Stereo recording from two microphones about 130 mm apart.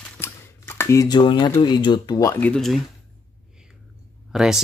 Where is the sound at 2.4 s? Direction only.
5° left (ahead or behind).